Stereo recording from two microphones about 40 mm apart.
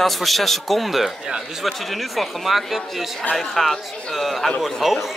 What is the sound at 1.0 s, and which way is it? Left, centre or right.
Speech, centre.